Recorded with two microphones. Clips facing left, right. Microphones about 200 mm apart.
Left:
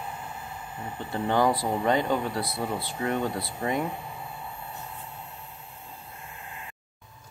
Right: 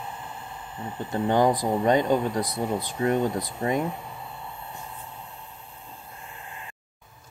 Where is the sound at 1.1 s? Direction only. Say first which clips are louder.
Right 3 dB; 15° right (ahead or behind).